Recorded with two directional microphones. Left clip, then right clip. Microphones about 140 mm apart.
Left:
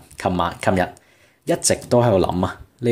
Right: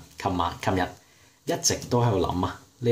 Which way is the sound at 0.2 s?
45° left (ahead or behind).